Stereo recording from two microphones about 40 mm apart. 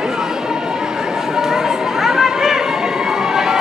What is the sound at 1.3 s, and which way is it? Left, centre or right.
Run, centre.